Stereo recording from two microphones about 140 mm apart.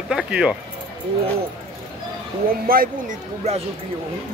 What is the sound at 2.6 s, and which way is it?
Speech, 90° right.